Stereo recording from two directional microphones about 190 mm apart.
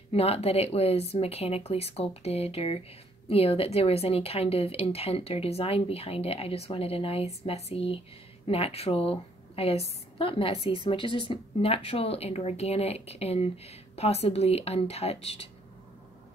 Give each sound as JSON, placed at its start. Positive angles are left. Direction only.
{"t": 0.1, "sound": "a woman's voice", "side_deg": 30}